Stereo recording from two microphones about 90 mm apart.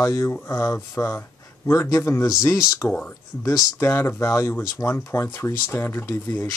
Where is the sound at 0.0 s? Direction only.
35° left (ahead or behind).